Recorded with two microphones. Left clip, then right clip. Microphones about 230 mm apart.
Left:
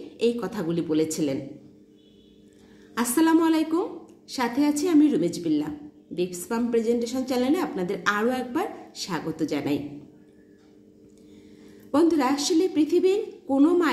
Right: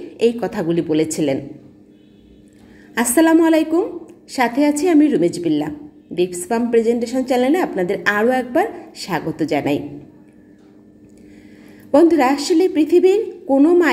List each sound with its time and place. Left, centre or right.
0.2 s a woman's voice: left
3.2 s a woman's voice: left
11.9 s a woman's voice: left